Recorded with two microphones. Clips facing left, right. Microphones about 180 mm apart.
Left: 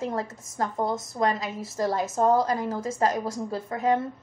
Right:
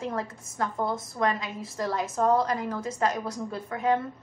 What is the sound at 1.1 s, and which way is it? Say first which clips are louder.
A woman's voice: left 2 dB; 35° left (ahead or behind).